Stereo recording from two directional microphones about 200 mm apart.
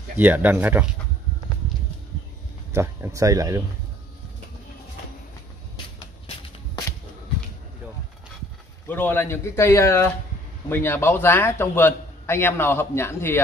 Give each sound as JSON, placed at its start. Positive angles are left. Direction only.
{"t": 0.2, "sound": "speech", "side_deg": -10}
{"t": 2.7, "sound": "speech", "side_deg": -15}
{"t": 8.8, "sound": "a man's voice", "side_deg": 10}